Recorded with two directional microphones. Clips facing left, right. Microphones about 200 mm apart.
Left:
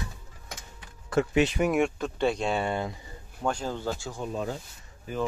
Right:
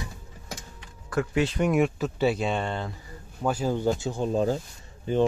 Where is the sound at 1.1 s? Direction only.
20° left (ahead or behind).